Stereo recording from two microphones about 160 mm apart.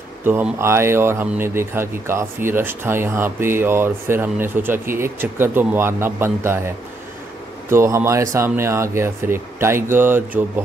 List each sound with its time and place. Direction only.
0.2 s speech: 15° right (ahead or behind)
7.7 s speech: 15° right (ahead or behind)